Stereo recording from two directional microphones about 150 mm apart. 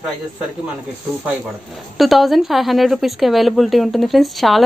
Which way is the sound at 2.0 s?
Centre (ahead or behind).